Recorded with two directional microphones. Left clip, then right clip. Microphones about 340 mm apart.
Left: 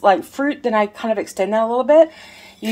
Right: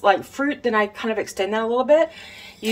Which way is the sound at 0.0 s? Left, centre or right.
Centre.